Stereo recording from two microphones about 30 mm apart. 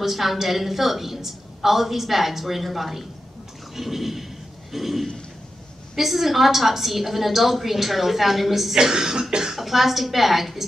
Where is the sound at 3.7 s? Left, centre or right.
Centre.